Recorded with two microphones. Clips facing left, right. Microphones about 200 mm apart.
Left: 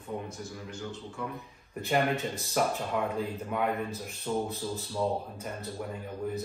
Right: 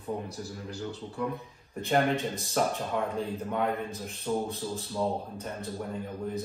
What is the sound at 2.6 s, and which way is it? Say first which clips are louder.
Speech: even; 5° left (ahead or behind).